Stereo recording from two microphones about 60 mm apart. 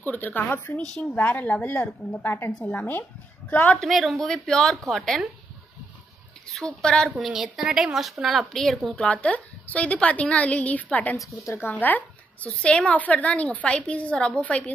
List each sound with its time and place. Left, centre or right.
0.0 s speech: left
0.7 s a woman's voice: centre
1.1 s a woman's voice: left
3.8 s speech: centre
6.5 s a woman's voice: centre
7.6 s speech: centre
8.9 s a woman's voice: left
12.4 s a woman's voice: centre